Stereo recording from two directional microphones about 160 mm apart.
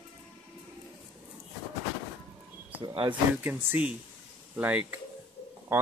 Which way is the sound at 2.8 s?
30° right (ahead or behind).